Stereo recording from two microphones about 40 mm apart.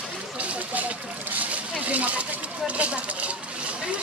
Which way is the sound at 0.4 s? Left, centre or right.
Right.